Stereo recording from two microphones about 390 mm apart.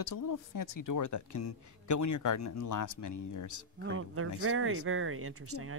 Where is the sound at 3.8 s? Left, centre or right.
Right.